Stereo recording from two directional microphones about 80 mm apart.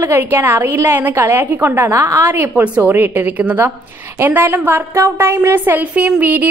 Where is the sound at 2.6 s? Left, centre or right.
Centre.